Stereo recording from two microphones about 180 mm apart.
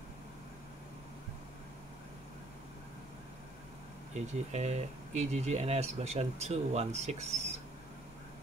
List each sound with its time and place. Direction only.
4.1 s speech: 40° right (ahead or behind)